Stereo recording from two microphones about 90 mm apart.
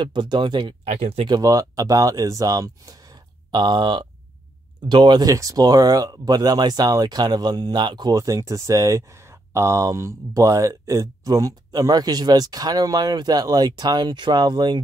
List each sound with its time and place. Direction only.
0.0 s speech: 60° right (ahead or behind)
1.4 s speech: 40° right (ahead or behind); by 5.2 s 60° right (ahead or behind)
5.2 s speech: 40° right (ahead or behind)
8.2 s speech: 35° right (ahead or behind); by 14.8 s 55° right (ahead or behind)